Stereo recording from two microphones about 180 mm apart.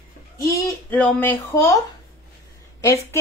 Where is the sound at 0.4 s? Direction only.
15° left (ahead or behind).